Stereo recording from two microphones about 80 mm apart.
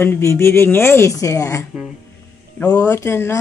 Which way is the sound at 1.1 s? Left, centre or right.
Left.